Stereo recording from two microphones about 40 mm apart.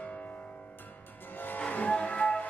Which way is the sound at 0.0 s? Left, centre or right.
Left.